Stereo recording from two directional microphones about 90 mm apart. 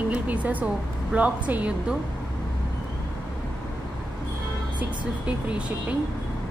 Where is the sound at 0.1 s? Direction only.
15° right (ahead or behind).